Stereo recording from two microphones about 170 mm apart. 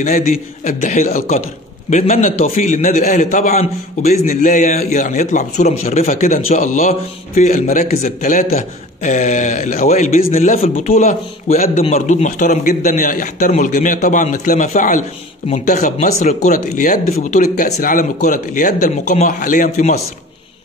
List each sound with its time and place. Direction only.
0.0 s speech: 50° left (ahead or behind)
11.0 s speech: 45° left (ahead or behind)